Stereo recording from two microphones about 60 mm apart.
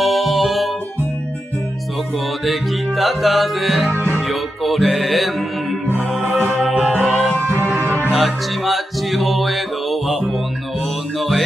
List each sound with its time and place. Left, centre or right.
0.0 s music: centre
3.0 s music: centre
3.9 s music: right
4.3 s music: centre
6.3 s music: centre
7.8 s music: left
8.1 s music: centre